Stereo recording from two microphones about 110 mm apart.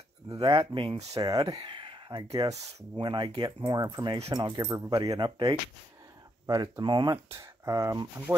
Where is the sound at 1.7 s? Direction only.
50° right (ahead or behind).